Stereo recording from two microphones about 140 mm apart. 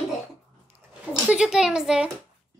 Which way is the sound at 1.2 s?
5° right (ahead or behind).